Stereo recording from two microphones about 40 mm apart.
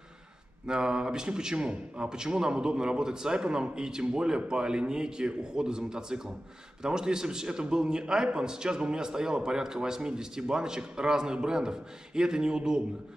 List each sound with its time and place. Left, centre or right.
0.7 s a man's voice: centre